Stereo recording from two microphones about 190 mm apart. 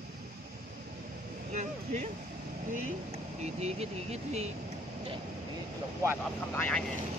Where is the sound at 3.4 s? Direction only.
35° right (ahead or behind).